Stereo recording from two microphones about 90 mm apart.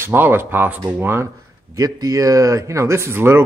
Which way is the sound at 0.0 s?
25° right (ahead or behind).